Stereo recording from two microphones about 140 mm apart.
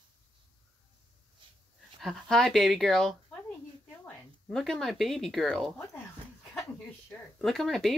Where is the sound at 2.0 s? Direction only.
Centre (ahead or behind).